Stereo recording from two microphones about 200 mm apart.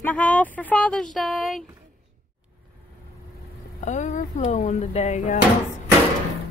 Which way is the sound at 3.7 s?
35° left (ahead or behind).